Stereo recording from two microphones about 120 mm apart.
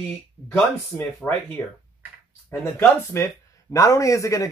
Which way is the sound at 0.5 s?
15° left (ahead or behind).